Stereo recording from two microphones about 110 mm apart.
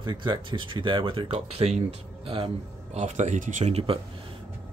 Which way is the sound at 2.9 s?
90° right.